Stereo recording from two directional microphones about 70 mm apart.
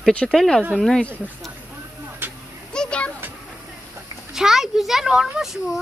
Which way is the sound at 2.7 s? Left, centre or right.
Centre.